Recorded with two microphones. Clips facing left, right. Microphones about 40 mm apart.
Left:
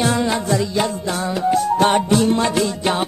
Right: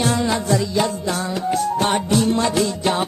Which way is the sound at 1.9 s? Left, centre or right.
Left.